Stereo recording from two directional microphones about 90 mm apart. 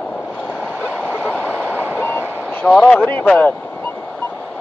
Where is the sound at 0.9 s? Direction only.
15° right (ahead or behind).